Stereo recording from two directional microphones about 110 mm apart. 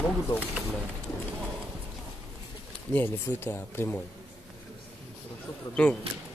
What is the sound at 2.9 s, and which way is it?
Speech, 20° left (ahead or behind).